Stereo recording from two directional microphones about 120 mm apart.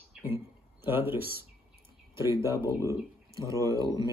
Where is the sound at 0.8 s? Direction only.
15° right (ahead or behind).